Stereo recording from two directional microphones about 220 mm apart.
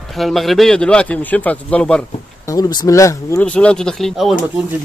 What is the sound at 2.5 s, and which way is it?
A man's voice, 15° left (ahead or behind).